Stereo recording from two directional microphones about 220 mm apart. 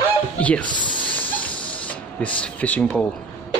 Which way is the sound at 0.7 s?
20° left (ahead or behind).